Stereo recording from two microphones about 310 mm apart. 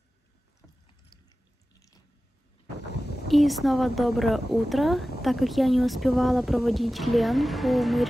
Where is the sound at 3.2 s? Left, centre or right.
Centre.